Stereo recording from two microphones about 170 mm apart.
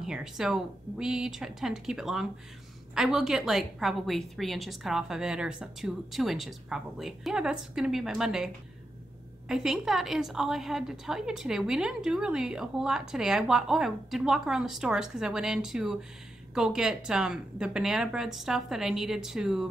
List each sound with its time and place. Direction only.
0.0 s a woman's voice: 5° right (ahead or behind)
9.5 s a woman's voice: 5° right (ahead or behind)